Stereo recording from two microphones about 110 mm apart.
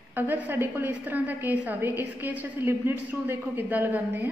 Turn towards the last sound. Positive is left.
turn(degrees=-15)  # may be behind; listen again after turning